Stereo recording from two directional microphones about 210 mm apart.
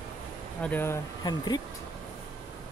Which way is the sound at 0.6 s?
10° left (ahead or behind).